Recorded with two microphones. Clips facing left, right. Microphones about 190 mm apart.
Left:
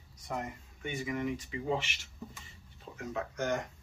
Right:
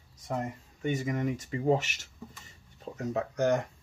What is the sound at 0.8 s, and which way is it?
Speech, 40° right (ahead or behind).